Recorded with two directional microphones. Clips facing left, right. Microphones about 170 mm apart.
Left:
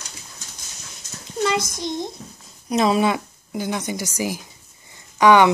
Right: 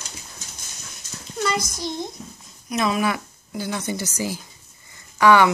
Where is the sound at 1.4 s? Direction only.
25° left (ahead or behind).